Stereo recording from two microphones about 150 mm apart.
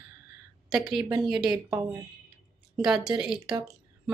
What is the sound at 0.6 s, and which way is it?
Speech, centre (ahead or behind).